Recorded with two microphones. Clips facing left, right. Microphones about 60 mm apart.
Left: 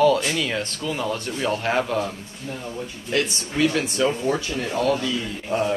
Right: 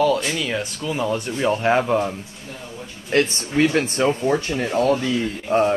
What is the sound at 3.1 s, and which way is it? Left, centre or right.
Speech, right.